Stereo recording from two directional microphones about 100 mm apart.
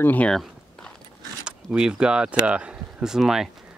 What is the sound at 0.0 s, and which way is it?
Speech, 15° left (ahead or behind).